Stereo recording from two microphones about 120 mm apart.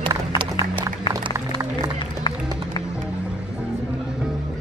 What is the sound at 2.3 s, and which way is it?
Music, 40° left (ahead or behind).